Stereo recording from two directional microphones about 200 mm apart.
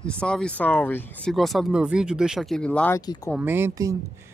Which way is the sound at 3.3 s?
10° right (ahead or behind).